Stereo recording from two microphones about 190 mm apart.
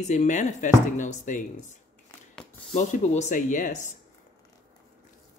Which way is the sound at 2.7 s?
40° left (ahead or behind).